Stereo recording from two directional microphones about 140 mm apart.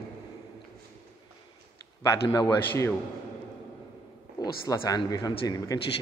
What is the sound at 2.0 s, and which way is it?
Speech, 30° left (ahead or behind).